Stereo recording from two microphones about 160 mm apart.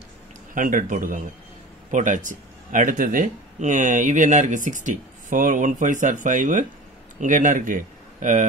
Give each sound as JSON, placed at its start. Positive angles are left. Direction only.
{"t": 0.6, "sound": "speech", "side_deg": -55}